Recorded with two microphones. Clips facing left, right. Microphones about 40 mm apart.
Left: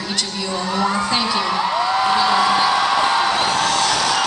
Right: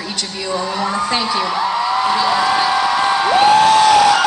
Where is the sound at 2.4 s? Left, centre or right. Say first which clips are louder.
Right 1 dB; centre.